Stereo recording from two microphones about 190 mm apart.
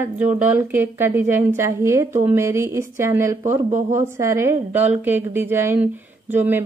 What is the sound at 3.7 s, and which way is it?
Speech, 40° right (ahead or behind).